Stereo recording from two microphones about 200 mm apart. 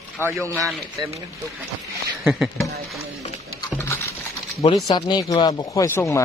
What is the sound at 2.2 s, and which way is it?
Speech, centre (ahead or behind).